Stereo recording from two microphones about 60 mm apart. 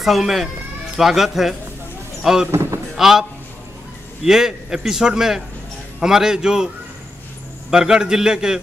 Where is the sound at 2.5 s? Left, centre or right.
Right.